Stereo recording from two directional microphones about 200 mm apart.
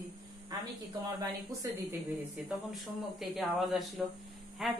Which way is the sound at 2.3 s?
Centre (ahead or behind).